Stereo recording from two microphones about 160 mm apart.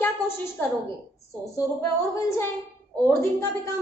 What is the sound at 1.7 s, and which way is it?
A woman's voice, 20° left (ahead or behind).